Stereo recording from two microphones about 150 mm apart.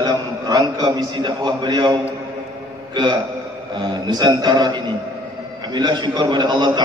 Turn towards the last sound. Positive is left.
turn(degrees=-30)  # may be behind; listen again after turning